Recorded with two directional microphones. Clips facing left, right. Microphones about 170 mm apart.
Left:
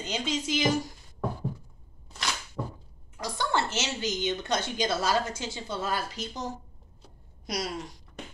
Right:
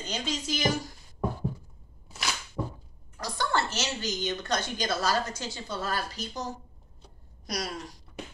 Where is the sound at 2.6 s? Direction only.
10° right (ahead or behind).